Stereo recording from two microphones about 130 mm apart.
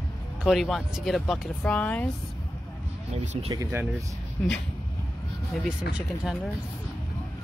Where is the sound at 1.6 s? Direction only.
10° left (ahead or behind).